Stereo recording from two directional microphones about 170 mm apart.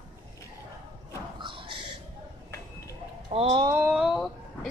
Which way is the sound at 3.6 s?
15° right (ahead or behind).